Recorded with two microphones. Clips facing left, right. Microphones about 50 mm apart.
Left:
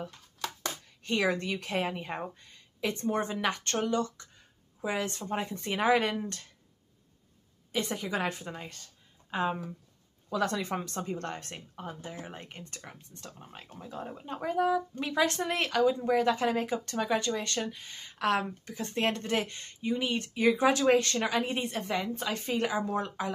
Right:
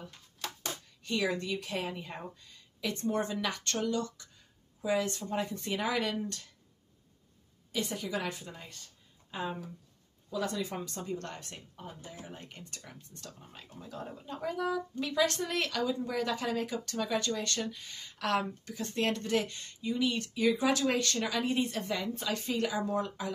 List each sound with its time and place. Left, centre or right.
1.0 s a woman's voice: left
2.9 s speech: left
7.7 s speech: left
10.3 s a woman's voice: left